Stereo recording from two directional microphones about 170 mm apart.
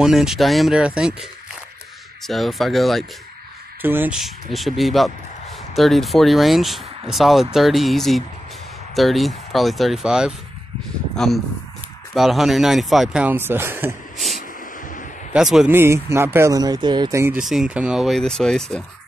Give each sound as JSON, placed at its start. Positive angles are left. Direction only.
{"t": 0.0, "sound": "speech", "side_deg": 0}
{"t": 2.2, "sound": "speech", "side_deg": 0}
{"t": 3.8, "sound": "speech", "side_deg": -10}
{"t": 4.2, "sound": "speech", "side_deg": 0}
{"t": 14.1, "sound": "a sound", "side_deg": 0}
{"t": 15.3, "sound": "speech", "side_deg": -5}
{"t": 15.7, "sound": "speech", "side_deg": -15}
{"t": 17.2, "sound": "speech", "side_deg": -5}